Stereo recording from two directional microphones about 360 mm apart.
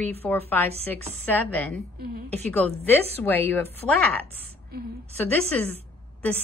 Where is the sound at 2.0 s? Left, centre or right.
Right.